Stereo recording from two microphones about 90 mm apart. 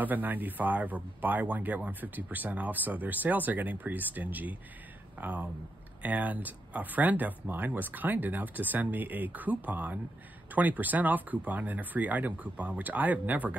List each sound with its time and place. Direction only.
0.0 s speech: 20° right (ahead or behind)